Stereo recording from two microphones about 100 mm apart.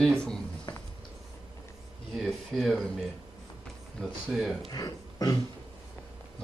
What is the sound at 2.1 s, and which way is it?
Speech, centre (ahead or behind).